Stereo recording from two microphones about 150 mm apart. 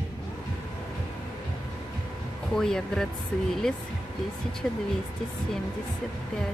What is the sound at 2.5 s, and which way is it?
Speech, 5° left (ahead or behind).